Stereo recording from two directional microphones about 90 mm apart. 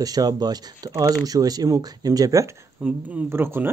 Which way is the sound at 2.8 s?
25° right (ahead or behind).